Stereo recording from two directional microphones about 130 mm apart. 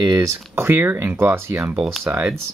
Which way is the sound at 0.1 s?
20° right (ahead or behind).